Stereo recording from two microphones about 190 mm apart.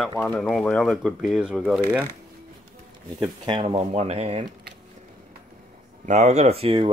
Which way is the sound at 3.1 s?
25° right (ahead or behind).